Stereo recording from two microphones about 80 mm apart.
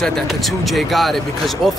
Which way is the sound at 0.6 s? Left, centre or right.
Centre.